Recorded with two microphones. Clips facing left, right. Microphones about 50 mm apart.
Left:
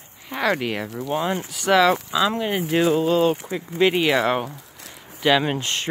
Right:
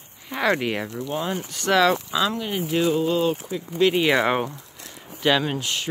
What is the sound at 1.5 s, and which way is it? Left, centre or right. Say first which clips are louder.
Speech: left 2 dB; centre.